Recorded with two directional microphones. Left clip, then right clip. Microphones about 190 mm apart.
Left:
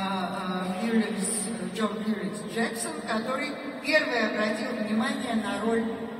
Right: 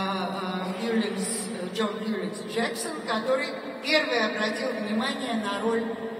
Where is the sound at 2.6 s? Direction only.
35° right (ahead or behind).